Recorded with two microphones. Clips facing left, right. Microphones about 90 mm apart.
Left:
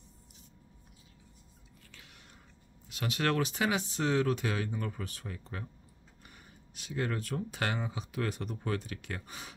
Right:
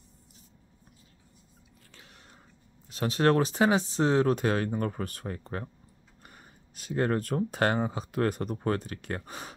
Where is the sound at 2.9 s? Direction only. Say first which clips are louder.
Right 7 dB; 35° right (ahead or behind).